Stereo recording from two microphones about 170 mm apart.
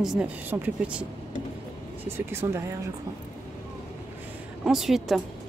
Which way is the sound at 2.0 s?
15° right (ahead or behind).